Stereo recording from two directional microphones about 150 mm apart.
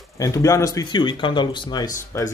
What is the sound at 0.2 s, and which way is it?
Speech, 20° left (ahead or behind).